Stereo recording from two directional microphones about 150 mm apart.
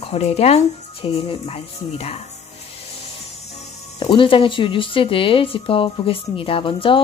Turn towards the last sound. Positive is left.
turn(degrees=35)  # may be behind; listen again after turning